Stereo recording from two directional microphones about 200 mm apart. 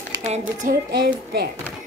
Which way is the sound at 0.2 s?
35° right (ahead or behind).